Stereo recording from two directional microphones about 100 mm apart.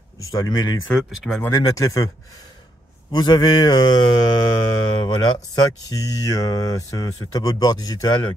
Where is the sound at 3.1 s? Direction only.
45° left (ahead or behind).